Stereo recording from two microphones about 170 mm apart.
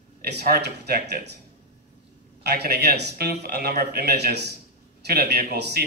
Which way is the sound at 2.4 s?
70° right (ahead or behind).